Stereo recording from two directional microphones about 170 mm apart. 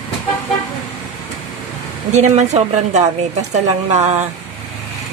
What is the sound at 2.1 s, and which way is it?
A woman's voice, 40° right (ahead or behind).